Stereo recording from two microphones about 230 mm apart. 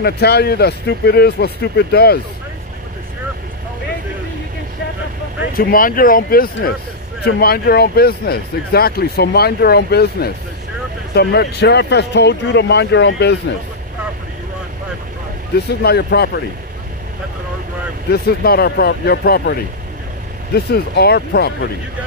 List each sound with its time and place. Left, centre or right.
0.0 s speech: left
5.6 s speech: left
15.5 s speech: left
18.1 s speech: left